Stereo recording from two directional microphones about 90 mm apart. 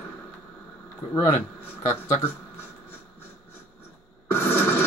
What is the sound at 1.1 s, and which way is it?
Speech, 30° left (ahead or behind).